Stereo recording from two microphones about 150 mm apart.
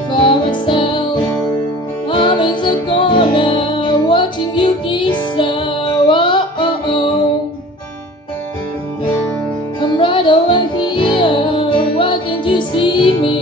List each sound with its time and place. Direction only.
0.1 s music: 30° left (ahead or behind)
9.8 s music: 35° left (ahead or behind)